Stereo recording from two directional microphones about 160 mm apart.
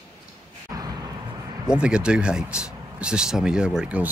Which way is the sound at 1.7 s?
5° right (ahead or behind).